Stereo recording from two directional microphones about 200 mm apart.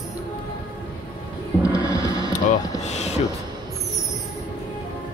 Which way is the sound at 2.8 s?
35° left (ahead or behind).